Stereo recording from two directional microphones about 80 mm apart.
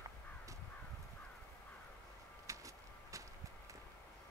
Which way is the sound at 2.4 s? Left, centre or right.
Right.